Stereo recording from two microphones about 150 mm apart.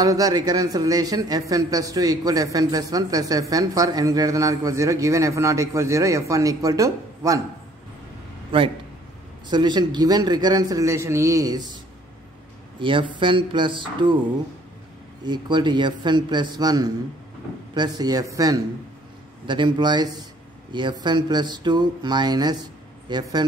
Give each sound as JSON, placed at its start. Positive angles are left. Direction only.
{"t": 0.0, "sound": "speech", "side_deg": -25}
{"t": 8.5, "sound": "a man's voice", "side_deg": -35}
{"t": 15.2, "sound": "speech", "side_deg": -30}